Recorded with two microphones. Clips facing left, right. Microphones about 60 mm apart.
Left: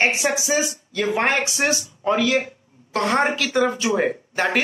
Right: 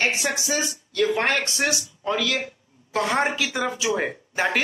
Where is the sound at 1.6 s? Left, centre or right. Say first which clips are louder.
Left 3 dB; left.